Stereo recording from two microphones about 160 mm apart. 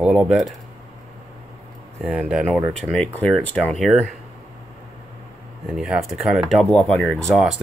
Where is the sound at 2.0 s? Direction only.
5° right (ahead or behind).